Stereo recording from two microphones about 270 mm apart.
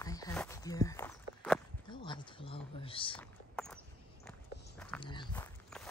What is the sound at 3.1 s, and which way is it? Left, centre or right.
Walk, centre.